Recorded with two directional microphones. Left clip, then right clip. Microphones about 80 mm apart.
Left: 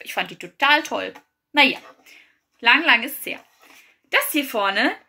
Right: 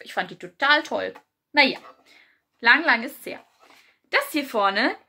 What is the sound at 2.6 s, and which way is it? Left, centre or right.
Speech, right.